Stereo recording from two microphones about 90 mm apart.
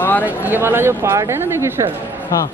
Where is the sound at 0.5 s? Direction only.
25° right (ahead or behind).